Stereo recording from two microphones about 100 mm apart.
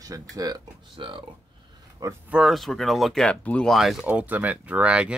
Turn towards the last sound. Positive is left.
turn(degrees=-10)  # may be behind; listen again after turning